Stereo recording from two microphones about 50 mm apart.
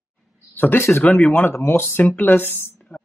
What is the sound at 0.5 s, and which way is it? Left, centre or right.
Speech, left.